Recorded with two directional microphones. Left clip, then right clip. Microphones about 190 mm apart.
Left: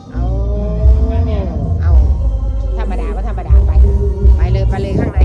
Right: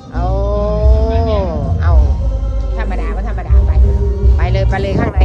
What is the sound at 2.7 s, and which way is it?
Speech, 10° left (ahead or behind).